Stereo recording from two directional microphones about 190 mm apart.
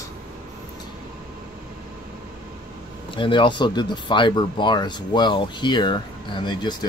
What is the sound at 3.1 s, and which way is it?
Speech, 25° left (ahead or behind).